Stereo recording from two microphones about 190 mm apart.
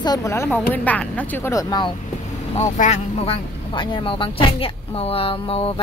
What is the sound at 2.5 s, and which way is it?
Speech, 35° left (ahead or behind).